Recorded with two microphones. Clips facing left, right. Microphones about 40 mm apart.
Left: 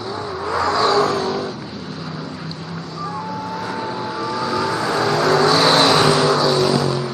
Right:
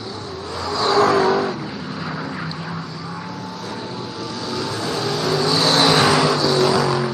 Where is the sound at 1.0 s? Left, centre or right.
Centre.